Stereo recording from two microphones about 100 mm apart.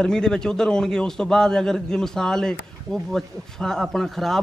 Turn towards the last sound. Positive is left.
turn(degrees=0)  # may be behind; listen again after turning